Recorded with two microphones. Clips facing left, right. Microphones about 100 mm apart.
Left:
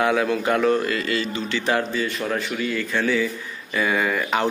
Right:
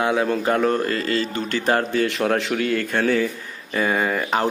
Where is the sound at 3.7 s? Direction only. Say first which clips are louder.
Right 1 dB; 35° right (ahead or behind).